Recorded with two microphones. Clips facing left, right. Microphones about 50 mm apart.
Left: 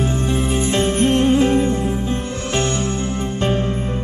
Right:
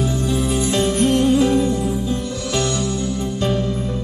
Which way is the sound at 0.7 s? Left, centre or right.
Left.